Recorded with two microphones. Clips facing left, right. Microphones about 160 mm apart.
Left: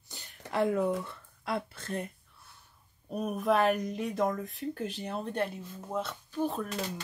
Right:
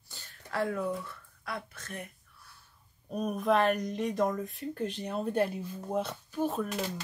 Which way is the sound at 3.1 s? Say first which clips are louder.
Even; 5° left (ahead or behind).